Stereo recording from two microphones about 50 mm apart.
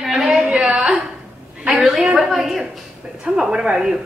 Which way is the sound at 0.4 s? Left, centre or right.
Right.